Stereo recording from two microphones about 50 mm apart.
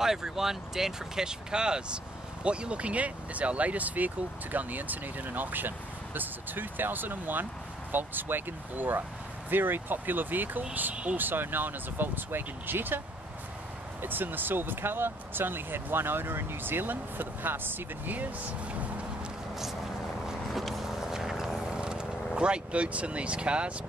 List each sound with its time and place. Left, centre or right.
0.0 s speech: centre; by 13.0 s right
14.0 s speech: right
18.7 s music: right
20.2 s vehicle: centre; by 23.7 s right